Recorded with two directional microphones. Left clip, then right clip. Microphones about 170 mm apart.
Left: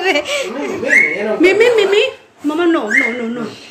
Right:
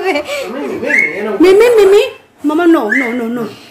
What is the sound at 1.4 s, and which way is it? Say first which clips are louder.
Speech: right 5 dB; 50° right (ahead or behind).